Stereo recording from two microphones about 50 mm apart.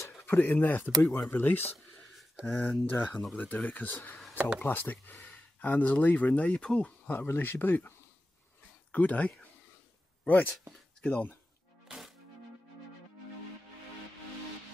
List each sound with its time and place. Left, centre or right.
0.2 s speech: left
2.7 s speech: left
6.4 s speech: left
7.1 s speech: left
8.9 s speech: left
11.0 s speech: left